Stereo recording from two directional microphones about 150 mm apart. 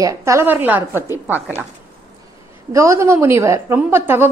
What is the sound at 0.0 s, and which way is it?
A woman's voice, 20° right (ahead or behind).